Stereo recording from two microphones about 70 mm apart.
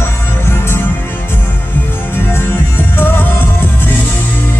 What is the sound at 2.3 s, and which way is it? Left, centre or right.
Music, left.